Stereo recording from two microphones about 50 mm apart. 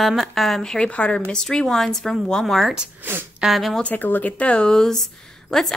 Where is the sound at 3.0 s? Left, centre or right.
Right.